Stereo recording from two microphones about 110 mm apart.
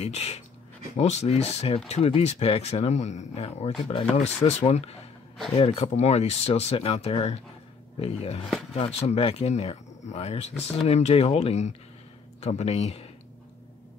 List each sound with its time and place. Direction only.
0.0 s speech: 70° left (ahead or behind)
0.9 s speech: 90° left